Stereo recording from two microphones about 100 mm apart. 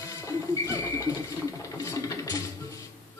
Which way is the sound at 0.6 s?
30° left (ahead or behind).